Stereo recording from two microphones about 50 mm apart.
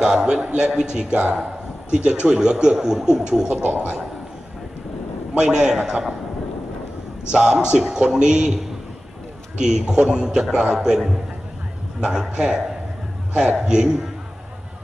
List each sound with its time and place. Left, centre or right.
0.0 s speech: centre
3.6 s a man's voice: right
5.3 s speech: centre
7.2 s speech: centre
9.6 s speech: centre
12.0 s speech: centre
13.6 s speech: centre